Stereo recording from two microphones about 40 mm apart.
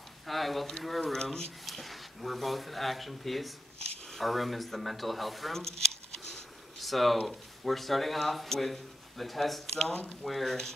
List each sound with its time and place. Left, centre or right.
0.3 s speech: centre
1.1 s speech: centre
1.7 s speech: centre
5.6 s a sound: centre
6.8 s speech: centre
9.8 s speech: left
10.2 s speech: centre